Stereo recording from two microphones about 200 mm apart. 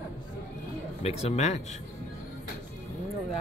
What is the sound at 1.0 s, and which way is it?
Speech, 30° left (ahead or behind).